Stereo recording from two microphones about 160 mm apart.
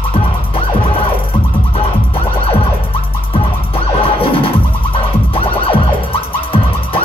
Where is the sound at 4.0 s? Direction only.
35° left (ahead or behind).